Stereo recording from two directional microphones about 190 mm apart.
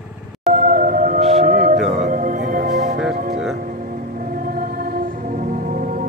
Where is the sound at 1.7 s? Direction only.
Centre (ahead or behind).